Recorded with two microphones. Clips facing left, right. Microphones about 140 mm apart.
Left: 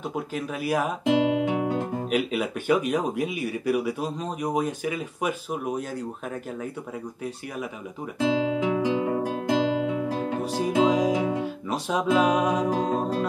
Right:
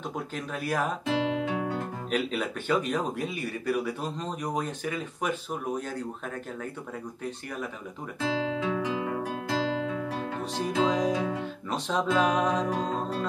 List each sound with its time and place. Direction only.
0.1 s speech: 5° left (ahead or behind)
8.2 s guitar: 15° left (ahead or behind)
8.8 s music: 30° left (ahead or behind)
9.5 s music: 15° left (ahead or behind)
12.7 s speech: 10° left (ahead or behind)